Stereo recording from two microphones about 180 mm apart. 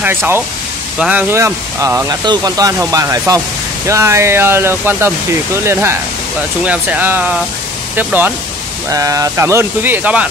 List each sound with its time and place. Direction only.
0.0 s speech: 15° right (ahead or behind)